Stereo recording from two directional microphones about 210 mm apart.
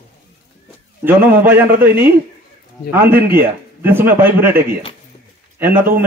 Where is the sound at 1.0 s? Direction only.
10° right (ahead or behind).